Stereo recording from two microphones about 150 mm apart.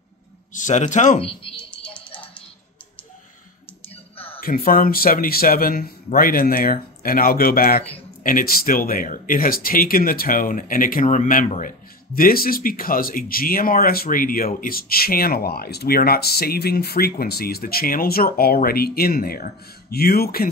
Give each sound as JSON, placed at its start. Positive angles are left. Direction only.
{"t": 0.6, "sound": "speech", "side_deg": 55}
{"t": 4.4, "sound": "speech", "side_deg": 75}
{"t": 8.2, "sound": "speech", "side_deg": 65}
{"t": 12.2, "sound": "speech", "side_deg": 75}